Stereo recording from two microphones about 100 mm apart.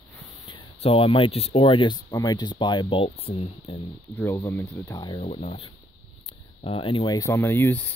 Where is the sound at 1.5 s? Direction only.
60° left (ahead or behind).